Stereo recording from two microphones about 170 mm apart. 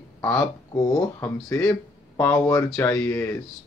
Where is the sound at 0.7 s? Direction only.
20° left (ahead or behind).